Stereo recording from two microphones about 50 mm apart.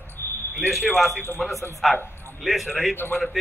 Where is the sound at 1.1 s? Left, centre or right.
Left.